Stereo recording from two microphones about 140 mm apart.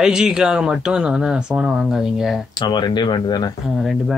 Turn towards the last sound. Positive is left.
turn(degrees=0)  # may be behind; listen again after turning